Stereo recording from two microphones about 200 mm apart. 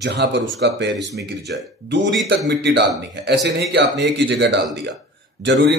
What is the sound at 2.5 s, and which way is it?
A man's voice, 60° right (ahead or behind).